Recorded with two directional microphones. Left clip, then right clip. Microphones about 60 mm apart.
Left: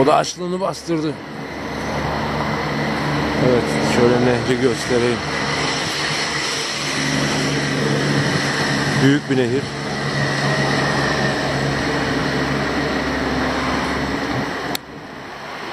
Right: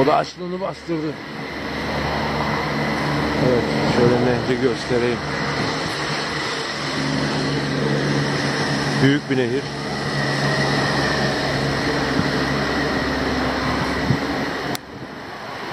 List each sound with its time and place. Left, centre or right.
0.0 s a man's voice: left
2.5 s vehicle: centre
3.2 s vehicle: left
3.8 s vehicle: left
10.0 s vehicle: left
10.6 s vehicle: centre